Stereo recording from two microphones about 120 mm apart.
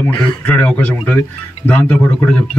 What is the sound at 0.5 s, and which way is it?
A man's voice, 20° left (ahead or behind).